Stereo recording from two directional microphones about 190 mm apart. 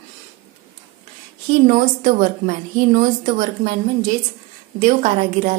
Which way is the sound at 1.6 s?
45° right (ahead or behind).